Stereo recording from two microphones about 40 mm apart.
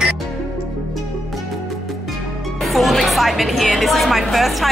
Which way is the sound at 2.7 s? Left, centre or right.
Centre.